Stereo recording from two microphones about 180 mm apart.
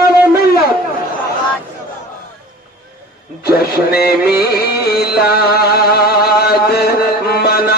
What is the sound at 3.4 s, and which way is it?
Music, 60° left (ahead or behind).